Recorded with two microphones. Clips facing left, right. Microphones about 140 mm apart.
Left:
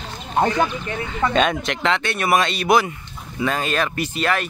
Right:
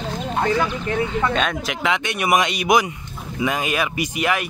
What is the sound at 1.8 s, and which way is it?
Speech, 15° right (ahead or behind).